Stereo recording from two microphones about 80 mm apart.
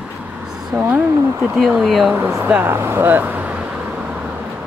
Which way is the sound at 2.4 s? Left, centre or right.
Right.